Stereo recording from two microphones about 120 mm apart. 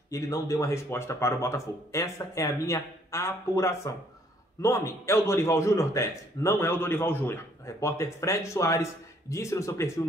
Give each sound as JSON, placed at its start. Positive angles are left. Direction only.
{"t": 0.1, "sound": "a man's voice", "side_deg": 25}